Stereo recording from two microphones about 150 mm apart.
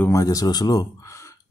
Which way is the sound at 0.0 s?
20° left (ahead or behind).